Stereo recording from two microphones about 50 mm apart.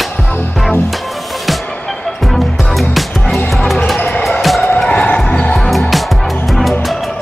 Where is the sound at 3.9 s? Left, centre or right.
Left.